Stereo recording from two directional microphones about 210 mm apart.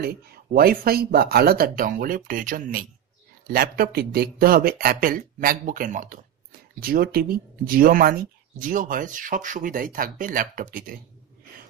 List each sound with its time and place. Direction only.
0.0 s speech: 45° right (ahead or behind)